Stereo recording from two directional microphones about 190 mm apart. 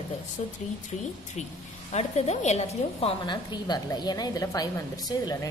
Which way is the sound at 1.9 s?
35° left (ahead or behind).